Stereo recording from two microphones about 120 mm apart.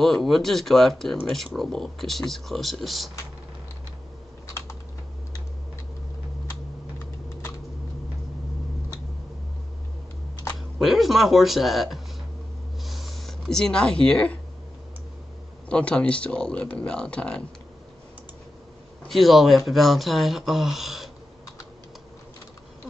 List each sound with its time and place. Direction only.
0.0 s speech: centre (ahead or behind)
10.8 s speech: centre (ahead or behind)
12.8 s a sound: centre (ahead or behind)
15.7 s speech: 10° left (ahead or behind)
19.0 s speech: centre (ahead or behind)